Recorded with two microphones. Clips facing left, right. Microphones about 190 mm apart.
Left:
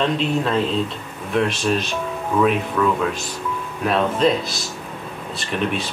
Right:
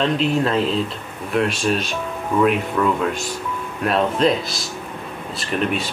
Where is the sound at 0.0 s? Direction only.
Centre (ahead or behind).